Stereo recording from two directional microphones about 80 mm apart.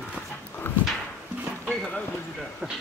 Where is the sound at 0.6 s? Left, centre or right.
Left.